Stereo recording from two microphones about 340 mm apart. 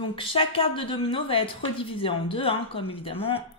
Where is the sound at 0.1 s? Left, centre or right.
Centre.